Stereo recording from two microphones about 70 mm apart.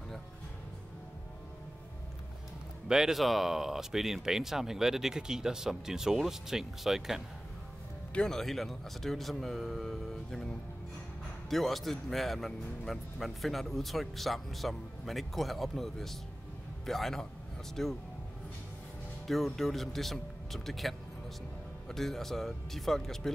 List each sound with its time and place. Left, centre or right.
2.9 s speech: centre
8.1 s speech: centre
19.2 s speech: centre